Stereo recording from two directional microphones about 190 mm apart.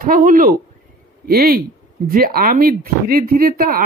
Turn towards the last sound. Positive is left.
turn(degrees=-50)  # may be behind; listen again after turning